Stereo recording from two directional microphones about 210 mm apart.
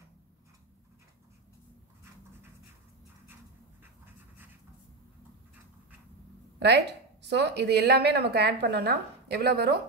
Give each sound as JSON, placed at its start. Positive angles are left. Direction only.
{"t": 6.6, "sound": "a woman's voice", "side_deg": -55}